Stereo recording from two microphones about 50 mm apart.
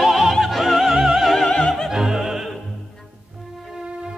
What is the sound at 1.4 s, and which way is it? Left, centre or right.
Opera, centre.